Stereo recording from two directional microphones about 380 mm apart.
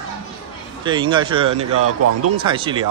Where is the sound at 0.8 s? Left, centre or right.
Centre.